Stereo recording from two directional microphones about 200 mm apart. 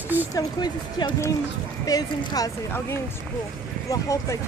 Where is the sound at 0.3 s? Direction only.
20° left (ahead or behind).